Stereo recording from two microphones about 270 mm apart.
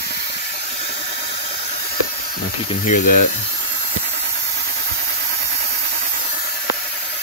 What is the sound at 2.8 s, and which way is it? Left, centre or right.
Speech, left.